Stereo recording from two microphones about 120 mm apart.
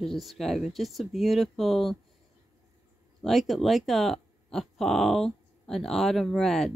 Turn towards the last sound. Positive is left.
turn(degrees=0)  # may be behind; listen again after turning